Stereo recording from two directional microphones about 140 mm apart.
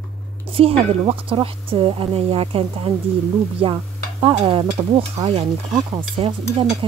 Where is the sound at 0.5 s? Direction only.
45° right (ahead or behind).